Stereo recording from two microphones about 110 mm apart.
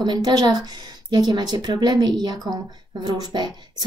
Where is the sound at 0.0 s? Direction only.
40° right (ahead or behind).